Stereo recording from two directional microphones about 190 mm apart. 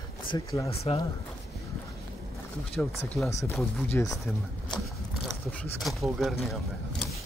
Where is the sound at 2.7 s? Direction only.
Centre (ahead or behind).